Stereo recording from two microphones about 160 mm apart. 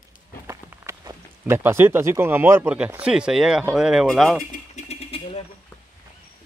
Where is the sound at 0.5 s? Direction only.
15° right (ahead or behind); by 4.5 s centre (ahead or behind).